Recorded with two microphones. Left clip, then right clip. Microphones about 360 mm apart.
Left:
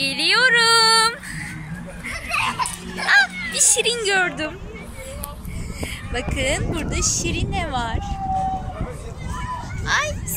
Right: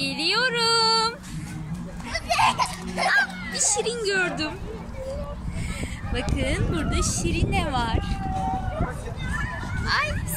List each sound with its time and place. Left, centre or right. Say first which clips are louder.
0.0 s music: left 6 dB; centre
2.3 s music: right 1 dB; centre
3.1 s music: left 7 dB; centre
6.1 s speech: left 5 dB; centre
9.8 s fowl: left 3 dB; centre